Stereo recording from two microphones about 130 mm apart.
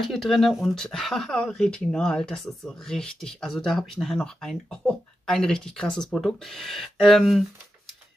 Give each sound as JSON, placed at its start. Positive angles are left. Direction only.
{"t": 0.0, "sound": "speech", "side_deg": 0}